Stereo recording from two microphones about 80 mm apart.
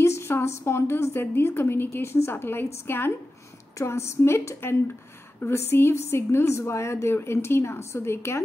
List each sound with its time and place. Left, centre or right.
0.0 s a woman's voice: left